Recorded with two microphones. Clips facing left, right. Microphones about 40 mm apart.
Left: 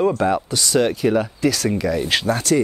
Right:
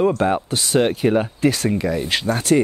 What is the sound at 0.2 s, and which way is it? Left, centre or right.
Speech, right.